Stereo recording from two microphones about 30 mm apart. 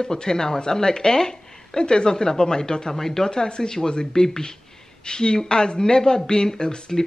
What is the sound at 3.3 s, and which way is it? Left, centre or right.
Speech, left.